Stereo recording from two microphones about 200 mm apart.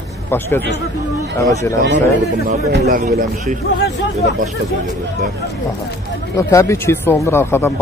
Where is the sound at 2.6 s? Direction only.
55° right (ahead or behind).